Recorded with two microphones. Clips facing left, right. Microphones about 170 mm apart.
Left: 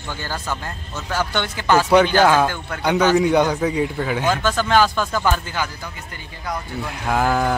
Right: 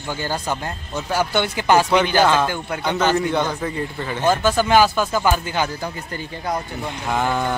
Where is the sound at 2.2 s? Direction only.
10° left (ahead or behind).